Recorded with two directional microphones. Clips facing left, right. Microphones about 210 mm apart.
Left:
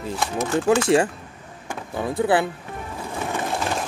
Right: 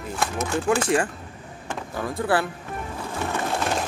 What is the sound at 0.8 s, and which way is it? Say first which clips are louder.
Music: left 4 dB; 25° left (ahead or behind).